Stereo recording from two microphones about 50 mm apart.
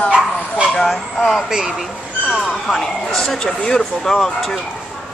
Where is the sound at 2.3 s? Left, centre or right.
Centre.